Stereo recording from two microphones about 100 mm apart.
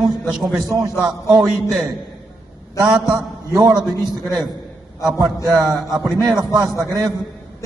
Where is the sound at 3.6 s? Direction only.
45° right (ahead or behind).